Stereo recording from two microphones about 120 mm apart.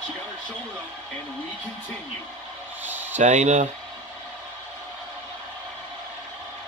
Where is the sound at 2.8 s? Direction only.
15° right (ahead or behind).